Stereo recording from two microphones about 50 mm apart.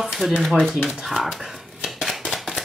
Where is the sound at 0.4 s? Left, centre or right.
Centre.